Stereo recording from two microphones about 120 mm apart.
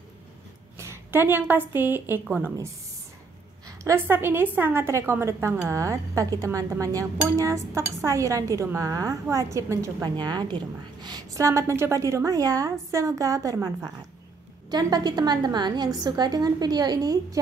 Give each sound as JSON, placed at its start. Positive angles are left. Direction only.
{"t": 0.7, "sound": "a woman's voice", "side_deg": -20}
{"t": 3.6, "sound": "a woman's voice", "side_deg": -25}